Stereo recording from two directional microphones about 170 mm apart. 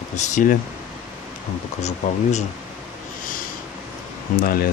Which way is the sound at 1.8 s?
40° left (ahead or behind).